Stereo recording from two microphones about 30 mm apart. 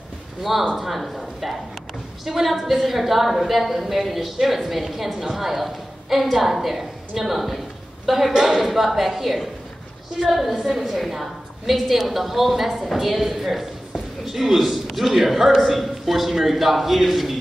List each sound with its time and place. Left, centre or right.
0.4 s a man's voice: centre
8.3 s speech: centre
8.6 s a man's voice: centre
10.7 s a man's voice: centre